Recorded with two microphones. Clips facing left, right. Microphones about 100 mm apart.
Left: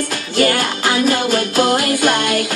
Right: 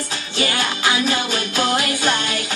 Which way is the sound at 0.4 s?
45° left (ahead or behind).